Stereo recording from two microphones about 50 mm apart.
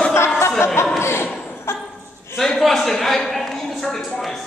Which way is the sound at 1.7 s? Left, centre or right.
Left.